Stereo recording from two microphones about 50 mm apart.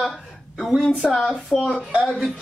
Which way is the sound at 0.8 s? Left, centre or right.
Centre.